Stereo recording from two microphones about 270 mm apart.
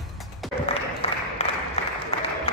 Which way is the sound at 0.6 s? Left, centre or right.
Left.